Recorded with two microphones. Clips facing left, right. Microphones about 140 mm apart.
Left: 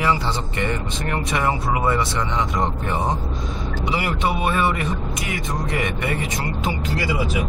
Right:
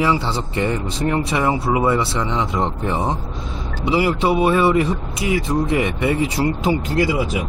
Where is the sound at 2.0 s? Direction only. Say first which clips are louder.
Right 2 dB; 25° right (ahead or behind).